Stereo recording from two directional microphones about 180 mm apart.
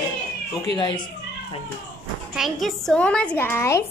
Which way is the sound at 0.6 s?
25° left (ahead or behind).